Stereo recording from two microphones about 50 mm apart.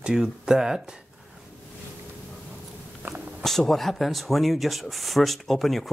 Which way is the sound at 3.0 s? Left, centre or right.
Right.